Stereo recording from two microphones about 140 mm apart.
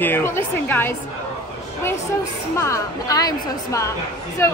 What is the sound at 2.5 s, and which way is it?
Speech, 20° left (ahead or behind).